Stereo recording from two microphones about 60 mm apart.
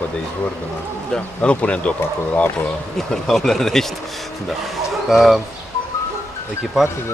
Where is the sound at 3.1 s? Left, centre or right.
Centre.